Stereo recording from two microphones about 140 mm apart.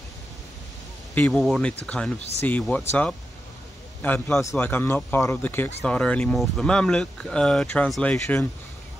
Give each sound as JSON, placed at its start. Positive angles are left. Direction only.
{"t": 1.3, "sound": "speech", "side_deg": 0}
{"t": 2.1, "sound": "speech", "side_deg": 50}
{"t": 2.7, "sound": "a man's voice", "side_deg": 15}